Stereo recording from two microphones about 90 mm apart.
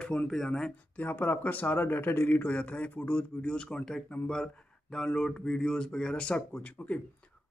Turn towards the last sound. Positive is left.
turn(degrees=15)  # may be behind; listen again after turning